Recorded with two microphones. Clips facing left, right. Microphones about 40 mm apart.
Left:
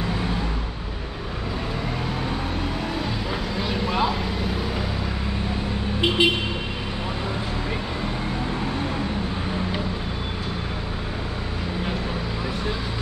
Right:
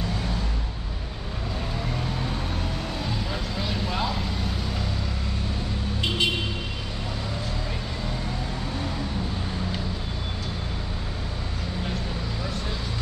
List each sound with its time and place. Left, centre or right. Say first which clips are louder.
3.5 s vehicle: left 5 dB; centre
5.9 s vehicle: left 6 dB; left